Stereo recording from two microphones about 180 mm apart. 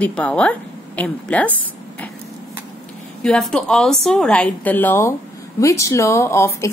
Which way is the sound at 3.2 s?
5° left (ahead or behind).